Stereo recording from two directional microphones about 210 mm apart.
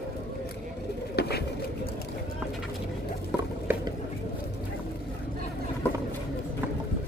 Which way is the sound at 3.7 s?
10° right (ahead or behind).